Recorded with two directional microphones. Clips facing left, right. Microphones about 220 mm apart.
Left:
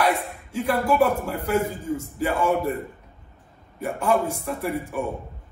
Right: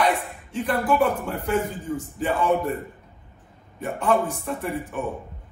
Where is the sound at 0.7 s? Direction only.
10° left (ahead or behind).